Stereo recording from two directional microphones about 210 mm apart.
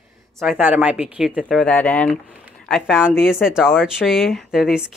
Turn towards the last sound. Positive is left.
turn(degrees=0)  # may be behind; listen again after turning